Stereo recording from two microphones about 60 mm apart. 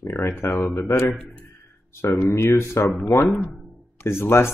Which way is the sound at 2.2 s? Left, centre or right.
Left.